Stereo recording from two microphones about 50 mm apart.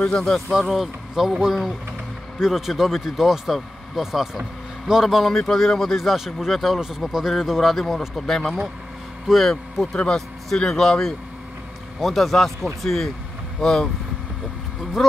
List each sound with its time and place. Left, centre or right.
0.0 s speech: centre
0.6 s speech: centre
5.5 s speech: centre
9.9 s speech: centre
15.0 s speech: centre